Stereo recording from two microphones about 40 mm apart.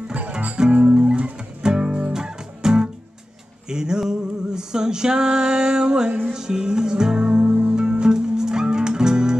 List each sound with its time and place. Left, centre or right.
0.7 s music: right
0.9 s music: right
7.4 s music: right
7.7 s music: right